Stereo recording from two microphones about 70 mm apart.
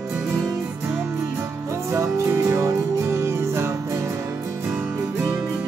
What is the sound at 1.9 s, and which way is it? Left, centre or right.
Music, right.